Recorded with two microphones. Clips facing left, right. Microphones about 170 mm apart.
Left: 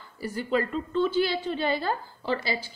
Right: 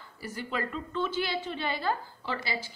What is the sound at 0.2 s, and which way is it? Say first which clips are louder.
A woman's voice: left 7 dB; 30° left (ahead or behind).